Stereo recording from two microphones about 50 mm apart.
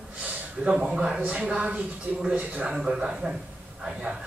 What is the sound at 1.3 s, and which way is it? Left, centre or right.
Speech, right.